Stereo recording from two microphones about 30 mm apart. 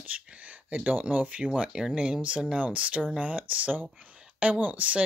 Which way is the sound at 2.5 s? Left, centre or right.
Right.